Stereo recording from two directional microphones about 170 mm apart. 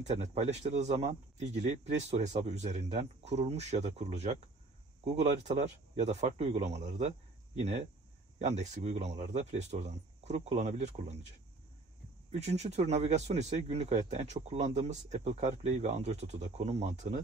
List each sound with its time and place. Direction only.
0.0 s speech: 40° right (ahead or behind)
12.3 s speech: 40° right (ahead or behind)